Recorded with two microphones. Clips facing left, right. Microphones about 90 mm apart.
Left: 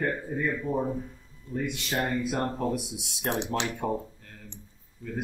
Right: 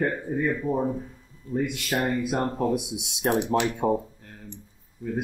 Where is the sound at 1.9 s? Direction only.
10° right (ahead or behind).